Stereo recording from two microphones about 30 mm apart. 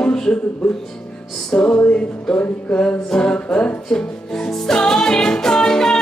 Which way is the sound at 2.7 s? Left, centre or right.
Left.